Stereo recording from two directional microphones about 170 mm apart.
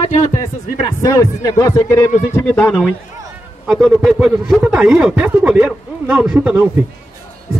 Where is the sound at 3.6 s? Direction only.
Centre (ahead or behind).